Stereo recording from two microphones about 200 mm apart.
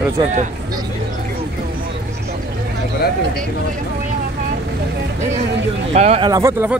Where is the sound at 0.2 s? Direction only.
35° right (ahead or behind).